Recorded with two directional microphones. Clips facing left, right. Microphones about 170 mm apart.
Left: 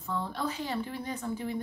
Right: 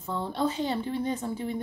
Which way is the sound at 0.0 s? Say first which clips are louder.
Right 5 dB; 25° right (ahead or behind).